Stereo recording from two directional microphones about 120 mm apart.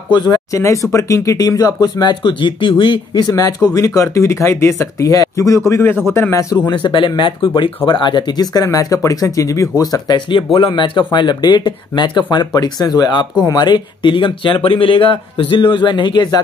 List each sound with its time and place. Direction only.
0.1 s speech: 35° left (ahead or behind)
6.8 s speech: 40° left (ahead or behind)